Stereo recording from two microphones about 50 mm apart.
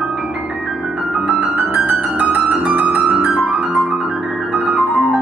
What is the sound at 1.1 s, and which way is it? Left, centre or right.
Music, centre.